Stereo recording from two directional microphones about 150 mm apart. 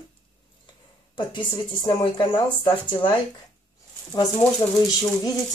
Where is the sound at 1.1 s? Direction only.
30° left (ahead or behind).